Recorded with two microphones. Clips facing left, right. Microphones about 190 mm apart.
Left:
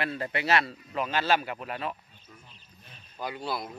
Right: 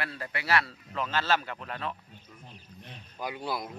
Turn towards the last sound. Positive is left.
turn(degrees=-15)  # may be behind; listen again after turning